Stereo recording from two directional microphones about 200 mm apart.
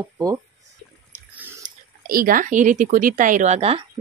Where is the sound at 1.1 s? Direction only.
10° right (ahead or behind).